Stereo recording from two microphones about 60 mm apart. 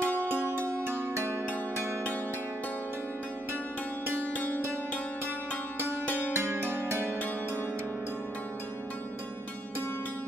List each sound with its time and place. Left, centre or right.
0.0 s music: left
0.3 s music: right
4.2 s music: left
6.0 s music: left
6.3 s music: right